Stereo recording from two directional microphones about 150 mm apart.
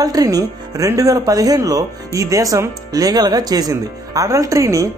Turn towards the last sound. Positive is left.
turn(degrees=-20)  # may be behind; listen again after turning